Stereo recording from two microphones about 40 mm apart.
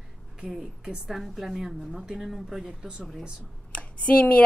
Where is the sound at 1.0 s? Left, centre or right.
Centre.